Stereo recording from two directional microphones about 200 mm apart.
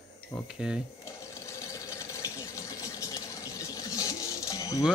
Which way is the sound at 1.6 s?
15° left (ahead or behind).